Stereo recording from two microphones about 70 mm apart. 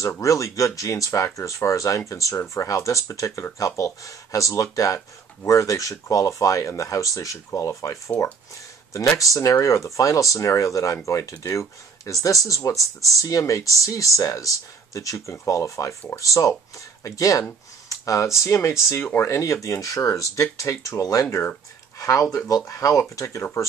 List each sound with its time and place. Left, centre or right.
0.2 s speech: left
9.2 s speech: left